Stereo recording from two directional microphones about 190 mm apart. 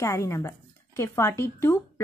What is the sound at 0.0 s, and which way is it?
A woman's voice, 15° left (ahead or behind).